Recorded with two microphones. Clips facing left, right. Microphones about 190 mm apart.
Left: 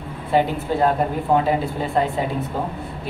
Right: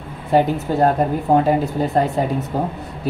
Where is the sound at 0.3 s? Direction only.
40° right (ahead or behind).